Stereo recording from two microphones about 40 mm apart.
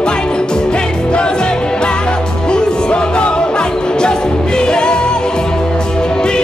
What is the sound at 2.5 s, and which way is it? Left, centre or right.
Music, left.